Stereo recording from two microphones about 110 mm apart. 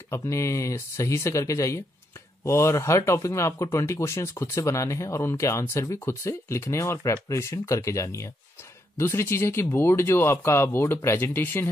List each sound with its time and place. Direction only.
0.1 s speech: 25° left (ahead or behind)